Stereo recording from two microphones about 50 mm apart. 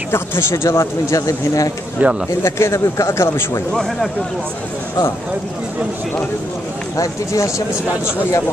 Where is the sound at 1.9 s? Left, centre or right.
Right.